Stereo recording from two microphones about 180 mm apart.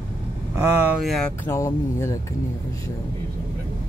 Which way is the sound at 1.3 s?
15° left (ahead or behind).